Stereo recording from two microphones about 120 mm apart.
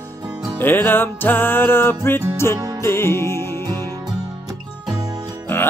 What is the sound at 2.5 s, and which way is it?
Music, 30° right (ahead or behind).